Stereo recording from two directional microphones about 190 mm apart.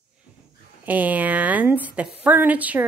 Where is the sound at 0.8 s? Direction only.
10° right (ahead or behind).